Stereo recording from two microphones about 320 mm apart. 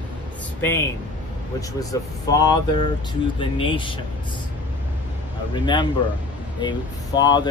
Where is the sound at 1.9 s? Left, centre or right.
Centre.